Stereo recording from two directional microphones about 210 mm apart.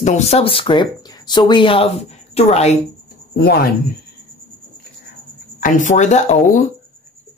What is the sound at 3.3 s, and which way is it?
Speech, 50° left (ahead or behind).